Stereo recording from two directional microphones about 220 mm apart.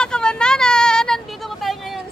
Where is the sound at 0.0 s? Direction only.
5° left (ahead or behind).